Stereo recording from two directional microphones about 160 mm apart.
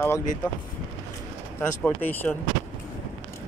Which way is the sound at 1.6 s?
10° left (ahead or behind).